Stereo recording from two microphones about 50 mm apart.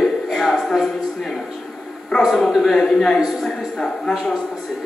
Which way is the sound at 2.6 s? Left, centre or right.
Centre.